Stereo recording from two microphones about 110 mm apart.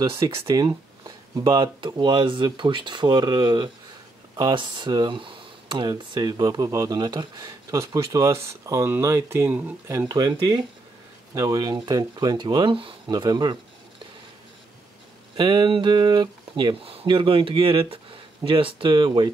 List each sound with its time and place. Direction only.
0.1 s speech: 30° right (ahead or behind)
0.7 s speech: 40° right (ahead or behind)
15.3 s speech: 45° right (ahead or behind)